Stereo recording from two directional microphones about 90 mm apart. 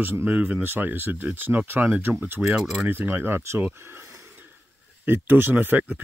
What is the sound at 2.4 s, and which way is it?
Speech, 5° right (ahead or behind).